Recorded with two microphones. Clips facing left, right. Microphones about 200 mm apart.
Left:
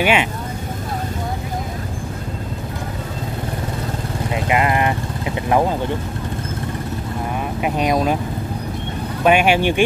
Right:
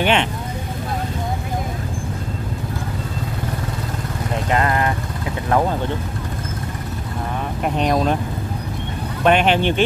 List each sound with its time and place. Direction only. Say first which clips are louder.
0.0 s speech: left 1 dB; 10° left (ahead or behind)
4.5 s vehicle: left 1 dB; 15° left (ahead or behind)
7.6 s speech: even; 5° left (ahead or behind)
9.2 s speech: left 1 dB; 10° left (ahead or behind)